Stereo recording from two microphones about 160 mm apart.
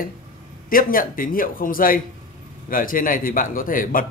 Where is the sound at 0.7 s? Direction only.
60° left (ahead or behind).